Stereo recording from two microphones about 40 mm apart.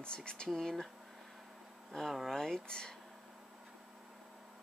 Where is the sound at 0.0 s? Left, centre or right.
Left.